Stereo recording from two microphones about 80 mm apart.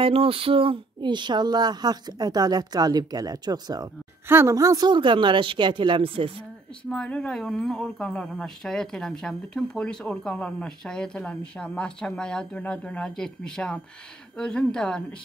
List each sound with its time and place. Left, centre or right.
0.6 s a woman's voice: right
4.3 s a woman's voice: right
4.6 s speech: right
4.8 s speech: right
6.9 s speech: centre